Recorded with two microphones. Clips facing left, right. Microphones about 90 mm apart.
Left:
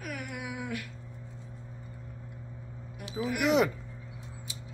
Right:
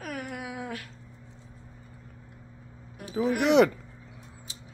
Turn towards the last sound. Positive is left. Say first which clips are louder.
# right 5 dB
turn(degrees=-70)  # may be behind; listen again after turning